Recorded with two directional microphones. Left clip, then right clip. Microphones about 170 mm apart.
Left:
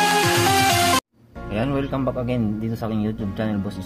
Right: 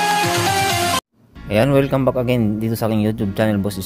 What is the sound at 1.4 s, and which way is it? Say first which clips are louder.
A man's voice: right 9 dB; 55° right (ahead or behind).